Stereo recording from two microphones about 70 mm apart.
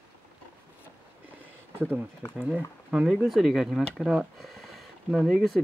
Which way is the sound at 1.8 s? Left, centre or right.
Right.